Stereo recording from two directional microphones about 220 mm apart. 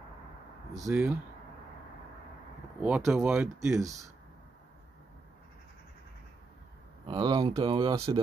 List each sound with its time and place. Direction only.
0.8 s speech: 10° right (ahead or behind)
2.8 s speech: 5° right (ahead or behind)
7.1 s speech: 20° right (ahead or behind)